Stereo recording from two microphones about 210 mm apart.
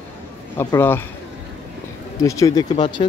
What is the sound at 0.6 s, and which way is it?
Speech, 10° left (ahead or behind).